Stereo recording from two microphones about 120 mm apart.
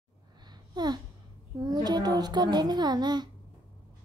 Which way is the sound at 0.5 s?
35° right (ahead or behind).